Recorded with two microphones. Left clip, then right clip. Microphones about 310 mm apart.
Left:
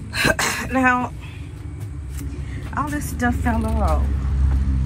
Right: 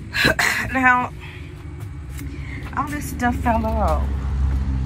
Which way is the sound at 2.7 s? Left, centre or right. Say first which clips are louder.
Even; centre.